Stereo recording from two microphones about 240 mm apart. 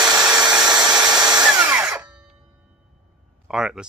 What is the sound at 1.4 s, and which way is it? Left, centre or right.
Drill, centre.